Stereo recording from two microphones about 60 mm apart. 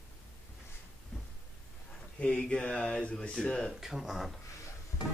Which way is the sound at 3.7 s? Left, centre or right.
Centre.